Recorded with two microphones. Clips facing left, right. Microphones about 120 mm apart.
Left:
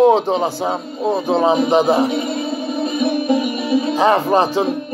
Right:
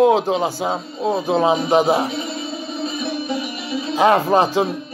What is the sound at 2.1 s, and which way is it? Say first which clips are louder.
Music: left 6 dB; 50° left (ahead or behind).